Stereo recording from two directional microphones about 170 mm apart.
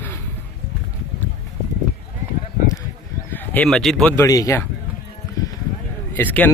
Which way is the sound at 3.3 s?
10° left (ahead or behind).